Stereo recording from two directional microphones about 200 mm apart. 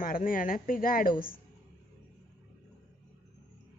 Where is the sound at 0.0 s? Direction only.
45° left (ahead or behind).